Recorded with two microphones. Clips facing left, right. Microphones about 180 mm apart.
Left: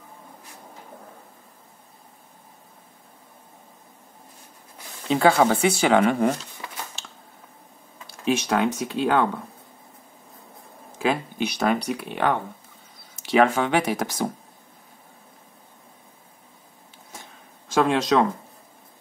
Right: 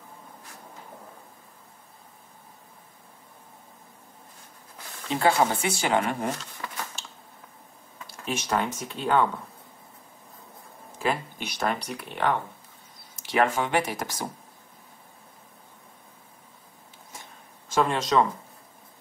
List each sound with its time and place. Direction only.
5.1 s speech: 85° left
8.3 s speech: 80° left
11.0 s speech: 90° left
13.4 s speech: 90° left
17.6 s speech: 85° left